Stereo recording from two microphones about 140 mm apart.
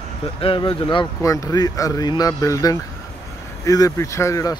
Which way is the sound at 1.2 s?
25° left (ahead or behind).